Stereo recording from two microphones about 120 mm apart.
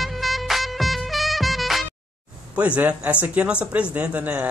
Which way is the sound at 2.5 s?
10° right (ahead or behind).